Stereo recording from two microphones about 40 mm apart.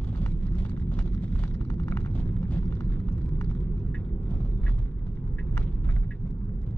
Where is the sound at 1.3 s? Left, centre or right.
Left.